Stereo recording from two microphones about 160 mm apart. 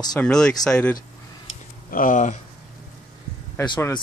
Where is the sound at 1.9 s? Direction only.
55° left (ahead or behind).